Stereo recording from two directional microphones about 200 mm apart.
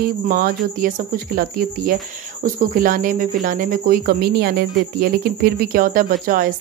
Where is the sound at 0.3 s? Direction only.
45° right (ahead or behind).